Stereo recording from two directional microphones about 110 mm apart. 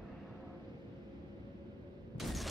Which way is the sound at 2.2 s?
Centre (ahead or behind).